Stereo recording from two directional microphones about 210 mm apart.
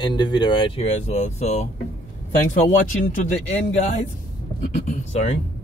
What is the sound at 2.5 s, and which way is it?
Music, 40° left (ahead or behind).